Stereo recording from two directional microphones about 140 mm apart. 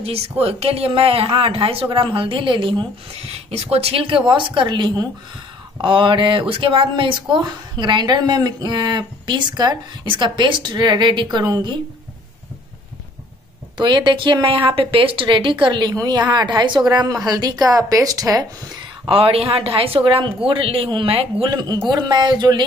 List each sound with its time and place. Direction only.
0.0 s speech: 45° right (ahead or behind)
3.4 s speech: 45° right (ahead or behind); by 11.7 s 30° right (ahead or behind)
13.7 s a woman's voice: 30° right (ahead or behind)
19.0 s speech: 40° right (ahead or behind)
21.5 s a woman's voice: 30° right (ahead or behind)